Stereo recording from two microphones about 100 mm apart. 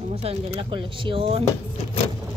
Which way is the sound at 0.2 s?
75° right (ahead or behind).